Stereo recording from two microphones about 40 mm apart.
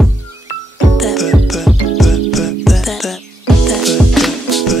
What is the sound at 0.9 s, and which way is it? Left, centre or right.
Music, centre.